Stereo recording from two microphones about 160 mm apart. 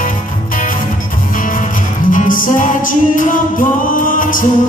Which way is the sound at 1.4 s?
55° left (ahead or behind).